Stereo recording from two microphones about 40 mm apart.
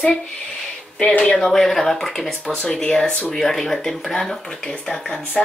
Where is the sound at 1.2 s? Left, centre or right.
Left.